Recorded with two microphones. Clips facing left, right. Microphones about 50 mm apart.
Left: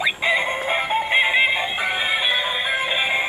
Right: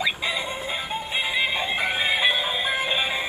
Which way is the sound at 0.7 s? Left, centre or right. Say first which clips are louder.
Left 8 dB; left.